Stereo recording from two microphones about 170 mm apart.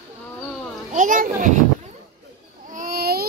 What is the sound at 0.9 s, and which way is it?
Speech, 50° right (ahead or behind).